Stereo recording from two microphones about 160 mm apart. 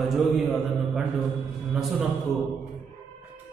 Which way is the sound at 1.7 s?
5° right (ahead or behind).